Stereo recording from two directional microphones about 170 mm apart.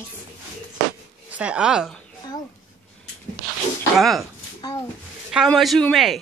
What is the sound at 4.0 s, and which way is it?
Speech, centre (ahead or behind).